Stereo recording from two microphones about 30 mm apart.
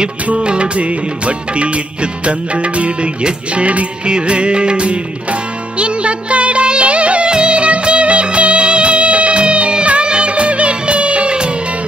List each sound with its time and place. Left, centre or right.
0.4 s music: right
0.7 s music of bollywood: right
2.2 s music: right
4.1 s music: right
5.8 s music of bollywood: right